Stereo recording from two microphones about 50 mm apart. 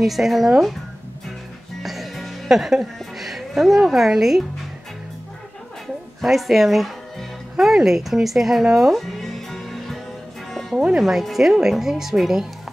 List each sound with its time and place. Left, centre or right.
0.0 s speech: centre
1.8 s speech: centre
6.2 s speech: centre
10.5 s music: centre
11.0 s speech: centre